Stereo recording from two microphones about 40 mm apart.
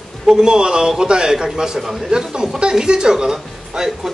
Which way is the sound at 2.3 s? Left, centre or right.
Centre.